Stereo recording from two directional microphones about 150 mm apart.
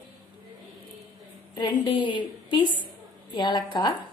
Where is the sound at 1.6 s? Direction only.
30° left (ahead or behind).